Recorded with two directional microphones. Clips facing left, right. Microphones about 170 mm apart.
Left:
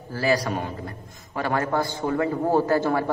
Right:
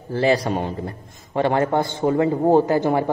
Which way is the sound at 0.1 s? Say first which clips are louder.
Right 4 dB; 25° right (ahead or behind).